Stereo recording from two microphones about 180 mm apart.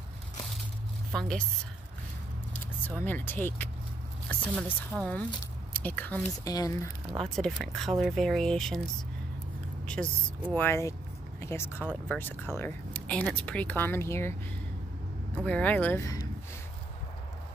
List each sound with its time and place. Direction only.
1.1 s speech: 5° left (ahead or behind)
3.0 s speech: 10° left (ahead or behind)
6.4 s speech: 20° left (ahead or behind)
7.2 s speech: 5° left (ahead or behind)
10.5 s speech: 10° left (ahead or behind)
15.4 s speech: 10° left (ahead or behind)